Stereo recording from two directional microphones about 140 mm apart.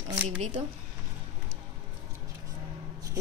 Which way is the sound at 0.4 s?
55° right (ahead or behind).